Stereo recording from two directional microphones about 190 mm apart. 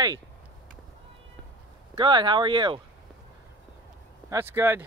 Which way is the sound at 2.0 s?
25° right (ahead or behind).